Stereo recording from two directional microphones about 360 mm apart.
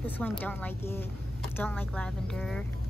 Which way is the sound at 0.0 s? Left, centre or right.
Centre.